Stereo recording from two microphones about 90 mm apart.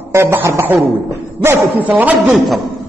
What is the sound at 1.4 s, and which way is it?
Music, 25° right (ahead or behind).